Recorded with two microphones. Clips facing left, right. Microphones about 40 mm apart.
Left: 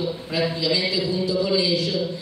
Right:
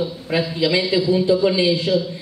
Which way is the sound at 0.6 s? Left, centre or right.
Right.